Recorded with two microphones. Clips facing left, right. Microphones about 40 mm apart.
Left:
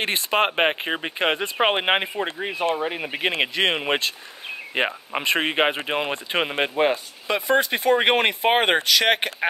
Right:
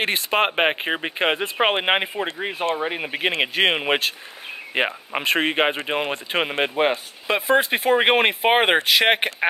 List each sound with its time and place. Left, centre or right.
0.0 s speech: centre